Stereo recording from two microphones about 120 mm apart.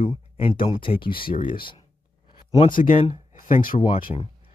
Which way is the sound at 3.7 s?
35° left (ahead or behind).